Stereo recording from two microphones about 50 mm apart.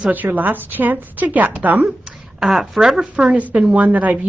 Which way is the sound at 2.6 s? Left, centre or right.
Centre.